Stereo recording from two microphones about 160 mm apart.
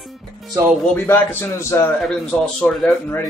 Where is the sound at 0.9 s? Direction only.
10° left (ahead or behind).